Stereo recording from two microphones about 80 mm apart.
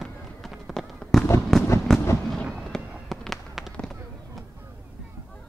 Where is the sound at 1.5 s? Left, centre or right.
Centre.